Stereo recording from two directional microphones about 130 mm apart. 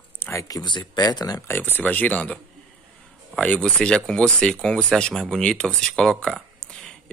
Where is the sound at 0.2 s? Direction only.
25° left (ahead or behind).